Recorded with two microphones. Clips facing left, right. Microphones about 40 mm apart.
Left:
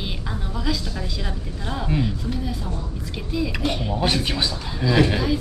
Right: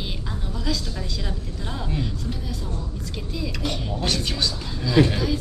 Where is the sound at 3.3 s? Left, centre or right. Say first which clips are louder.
Left 5 dB; centre.